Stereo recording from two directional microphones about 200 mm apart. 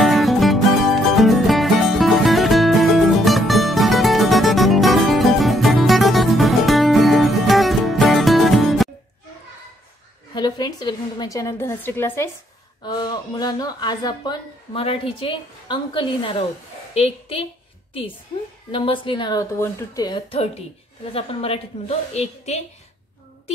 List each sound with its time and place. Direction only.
0.0 s music: centre (ahead or behind)
10.3 s a woman's voice: 20° left (ahead or behind)
12.8 s a woman's voice: 20° left (ahead or behind)
18.7 s a woman's voice: 25° left (ahead or behind)